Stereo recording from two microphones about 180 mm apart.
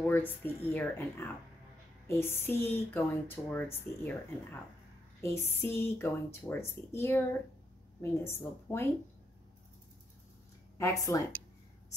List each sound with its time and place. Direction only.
0.0 s speech: 10° left (ahead or behind)
10.8 s speech: 20° left (ahead or behind)